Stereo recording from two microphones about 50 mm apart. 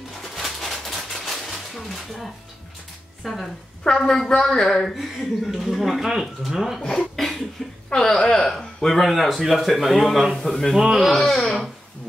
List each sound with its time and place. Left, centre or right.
0.4 s a sound: centre
3.2 s speech: centre
3.8 s speech: centre
6.8 s speech: centre
7.2 s cough: centre
7.9 s speech: centre
10.7 s speech: centre
11.1 s speech: centre